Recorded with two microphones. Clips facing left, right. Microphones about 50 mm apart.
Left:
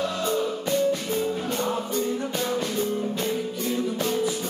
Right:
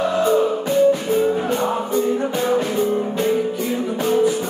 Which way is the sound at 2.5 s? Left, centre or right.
Centre.